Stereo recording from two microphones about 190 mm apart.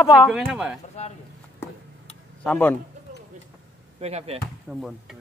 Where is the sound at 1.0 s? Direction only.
35° left (ahead or behind).